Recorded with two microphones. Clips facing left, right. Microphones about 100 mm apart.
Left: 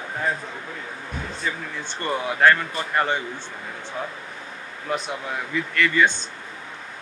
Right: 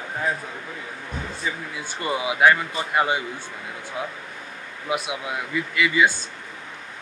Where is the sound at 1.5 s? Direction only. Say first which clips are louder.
Left 1 dB; 10° right (ahead or behind).